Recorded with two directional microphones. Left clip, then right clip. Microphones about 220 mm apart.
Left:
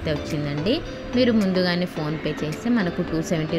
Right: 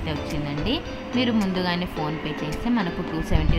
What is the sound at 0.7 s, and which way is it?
A woman's voice, 15° left (ahead or behind).